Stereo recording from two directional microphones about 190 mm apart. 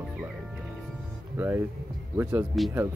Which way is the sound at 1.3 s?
15° right (ahead or behind).